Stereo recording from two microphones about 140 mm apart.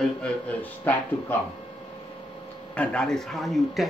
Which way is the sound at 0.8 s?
15° left (ahead or behind).